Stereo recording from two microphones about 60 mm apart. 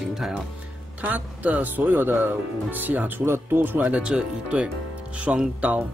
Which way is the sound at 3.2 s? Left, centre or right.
Right.